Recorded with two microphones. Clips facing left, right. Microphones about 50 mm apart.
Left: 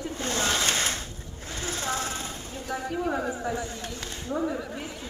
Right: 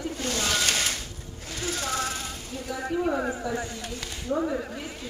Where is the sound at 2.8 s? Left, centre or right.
Right.